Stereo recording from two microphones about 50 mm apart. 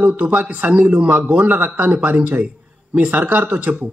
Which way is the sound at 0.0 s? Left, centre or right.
Right.